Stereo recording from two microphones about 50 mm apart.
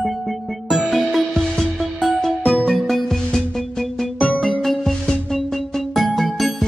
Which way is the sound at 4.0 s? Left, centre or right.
Centre.